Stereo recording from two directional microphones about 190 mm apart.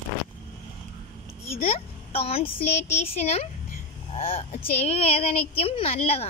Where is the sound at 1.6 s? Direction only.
30° left (ahead or behind).